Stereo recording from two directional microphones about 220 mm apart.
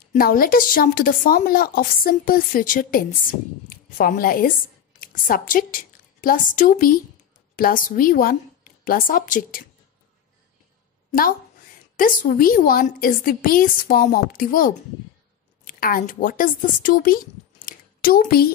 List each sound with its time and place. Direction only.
0.1 s a woman's voice: 40° left (ahead or behind)
11.1 s a woman's voice: 40° left (ahead or behind)
17.6 s a sound: 40° left (ahead or behind)